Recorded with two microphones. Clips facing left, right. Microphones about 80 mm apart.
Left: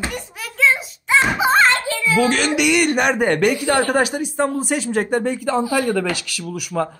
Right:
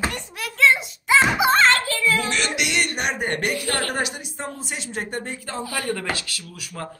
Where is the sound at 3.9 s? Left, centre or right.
Left.